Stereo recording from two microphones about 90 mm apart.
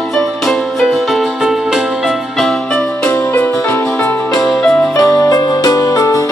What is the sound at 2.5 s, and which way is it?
Music, 5° left (ahead or behind).